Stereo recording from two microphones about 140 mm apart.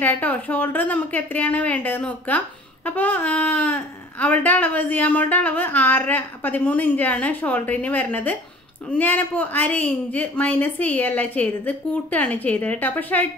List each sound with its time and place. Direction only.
0.0 s a woman's voice: 10° left (ahead or behind)